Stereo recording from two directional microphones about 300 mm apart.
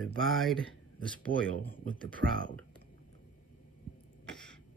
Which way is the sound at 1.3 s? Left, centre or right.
Right.